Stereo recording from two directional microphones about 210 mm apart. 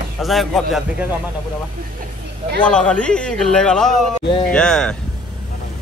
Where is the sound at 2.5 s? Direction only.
5° left (ahead or behind).